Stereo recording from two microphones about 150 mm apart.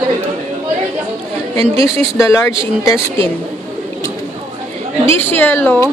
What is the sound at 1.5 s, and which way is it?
Speech, 40° right (ahead or behind).